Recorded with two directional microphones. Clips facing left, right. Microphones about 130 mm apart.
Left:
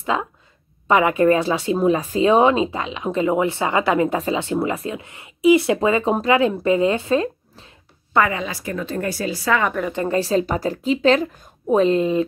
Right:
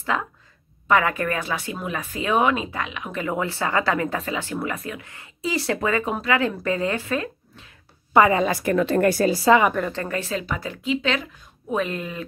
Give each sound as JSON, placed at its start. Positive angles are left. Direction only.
{"t": 0.0, "sound": "speech", "side_deg": 20}
{"t": 8.5, "sound": "a woman's voice", "side_deg": -60}
{"t": 9.2, "sound": "speech", "side_deg": -40}
{"t": 10.0, "sound": "speech", "side_deg": 30}
{"t": 11.7, "sound": "speech", "side_deg": 30}